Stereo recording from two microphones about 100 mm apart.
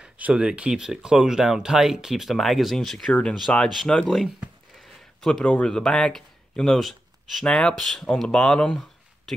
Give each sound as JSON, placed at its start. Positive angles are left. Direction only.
{"t": 0.0, "sound": "speech", "side_deg": -10}